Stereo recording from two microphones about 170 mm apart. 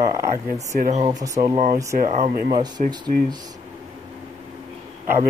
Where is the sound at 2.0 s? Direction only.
40° right (ahead or behind).